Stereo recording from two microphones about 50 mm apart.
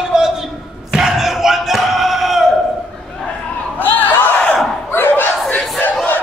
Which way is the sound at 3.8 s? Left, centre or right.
Left.